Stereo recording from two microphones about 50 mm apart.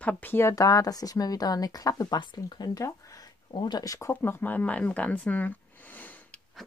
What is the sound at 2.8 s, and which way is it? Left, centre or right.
Speech, left.